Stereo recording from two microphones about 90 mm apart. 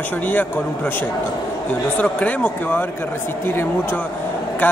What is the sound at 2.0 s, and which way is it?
A man's voice, 15° left (ahead or behind).